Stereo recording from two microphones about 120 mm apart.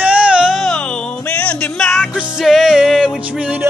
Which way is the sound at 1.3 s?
10° left (ahead or behind).